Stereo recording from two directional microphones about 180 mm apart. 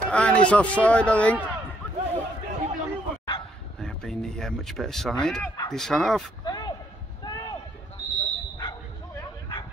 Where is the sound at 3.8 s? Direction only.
5° left (ahead or behind).